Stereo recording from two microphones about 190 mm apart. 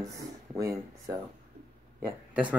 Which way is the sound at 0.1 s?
15° right (ahead or behind).